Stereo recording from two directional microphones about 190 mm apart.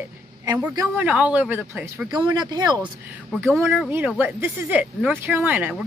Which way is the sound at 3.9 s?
10° right (ahead or behind).